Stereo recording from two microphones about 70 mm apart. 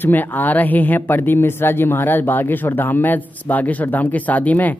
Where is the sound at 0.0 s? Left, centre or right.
Left.